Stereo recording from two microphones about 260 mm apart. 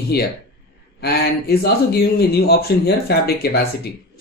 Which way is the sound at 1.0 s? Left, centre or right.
Left.